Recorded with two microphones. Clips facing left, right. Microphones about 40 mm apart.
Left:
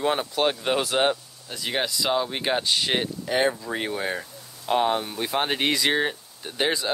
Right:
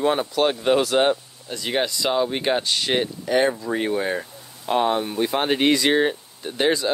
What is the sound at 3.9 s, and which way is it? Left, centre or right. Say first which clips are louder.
Speech: right 5 dB; centre.